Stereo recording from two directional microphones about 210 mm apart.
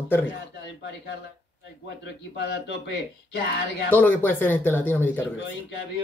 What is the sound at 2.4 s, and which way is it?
Speech, 55° left (ahead or behind).